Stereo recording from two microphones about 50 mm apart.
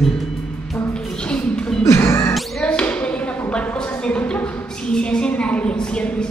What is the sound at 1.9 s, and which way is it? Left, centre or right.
Music, left.